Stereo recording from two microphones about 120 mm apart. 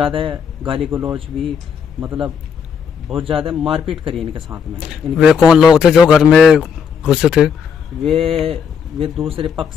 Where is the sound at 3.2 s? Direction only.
50° right (ahead or behind).